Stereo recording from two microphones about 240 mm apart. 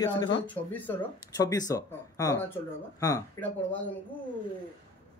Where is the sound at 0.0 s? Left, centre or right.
Centre.